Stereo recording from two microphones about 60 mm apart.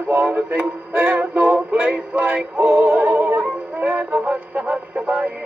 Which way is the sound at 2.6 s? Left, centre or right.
Right.